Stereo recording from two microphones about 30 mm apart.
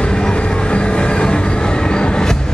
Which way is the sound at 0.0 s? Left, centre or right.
Left.